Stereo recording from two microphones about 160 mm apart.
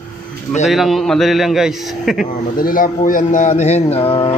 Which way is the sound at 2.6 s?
60° left (ahead or behind).